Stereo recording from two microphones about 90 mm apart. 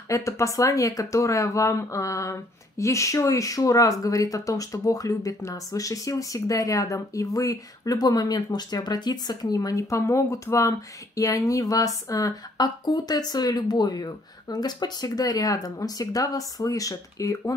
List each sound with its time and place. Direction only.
0.1 s speech: 35° left (ahead or behind)